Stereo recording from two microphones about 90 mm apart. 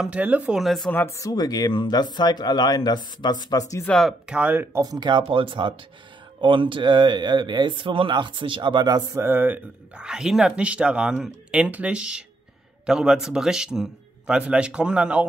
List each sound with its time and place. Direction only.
0.0 s a man's voice: 15° right (ahead or behind)
0.6 s speech: centre (ahead or behind)
0.9 s speech: 30° left (ahead or behind)
1.3 s speech: 45° left (ahead or behind)
3.8 s speech: 5° left (ahead or behind)
4.3 s a man's voice: 15° right (ahead or behind)
4.8 s speech: 50° right (ahead or behind)
9.2 s speech: 25° right (ahead or behind)
9.9 s a man's voice: 10° right (ahead or behind)